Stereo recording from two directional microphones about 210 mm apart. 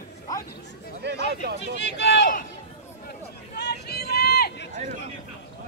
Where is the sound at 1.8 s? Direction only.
55° left (ahead or behind).